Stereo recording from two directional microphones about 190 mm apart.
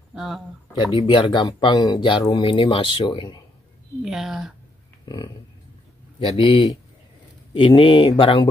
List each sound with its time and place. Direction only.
0.1 s speech: centre (ahead or behind)
0.9 s speech: 25° left (ahead or behind)
4.0 s speech: centre (ahead or behind)
5.0 s speech: 20° left (ahead or behind)